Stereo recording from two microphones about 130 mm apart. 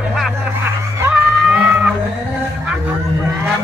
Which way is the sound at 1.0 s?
10° right (ahead or behind).